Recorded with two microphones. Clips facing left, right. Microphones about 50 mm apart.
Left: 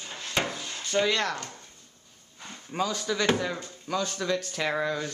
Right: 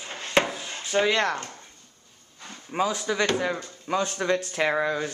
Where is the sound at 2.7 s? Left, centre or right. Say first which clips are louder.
Right 3 dB; centre.